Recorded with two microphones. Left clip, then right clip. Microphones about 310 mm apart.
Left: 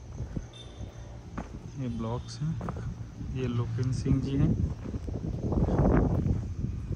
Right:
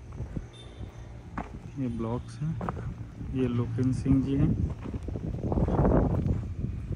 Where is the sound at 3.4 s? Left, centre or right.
Centre.